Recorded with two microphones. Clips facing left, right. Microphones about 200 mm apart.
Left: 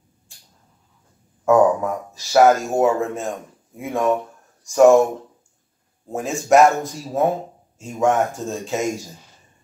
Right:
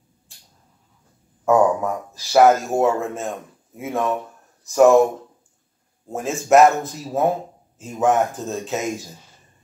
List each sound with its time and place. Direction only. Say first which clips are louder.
1.4 s speech: left 1 dB; centre (ahead or behind)
6.0 s speech: left 1 dB; centre (ahead or behind)